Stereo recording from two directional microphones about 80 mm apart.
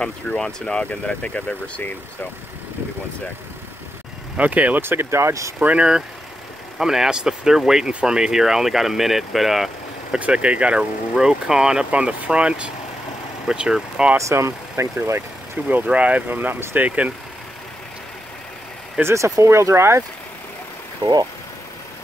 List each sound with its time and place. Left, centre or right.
0.0 s speech: centre
4.4 s speech: centre; by 5.5 s right
5.6 s speech: centre
10.1 s speech: centre
14.1 s speech: right
15.6 s speech: centre
16.8 s speech: centre
18.9 s speech: right
21.0 s speech: right